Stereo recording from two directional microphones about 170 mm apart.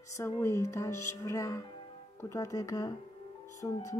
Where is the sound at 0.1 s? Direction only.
15° left (ahead or behind).